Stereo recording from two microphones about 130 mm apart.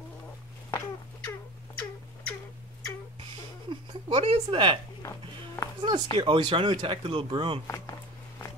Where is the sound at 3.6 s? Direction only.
40° right (ahead or behind).